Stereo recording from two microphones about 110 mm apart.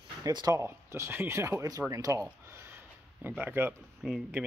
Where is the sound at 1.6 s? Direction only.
35° right (ahead or behind).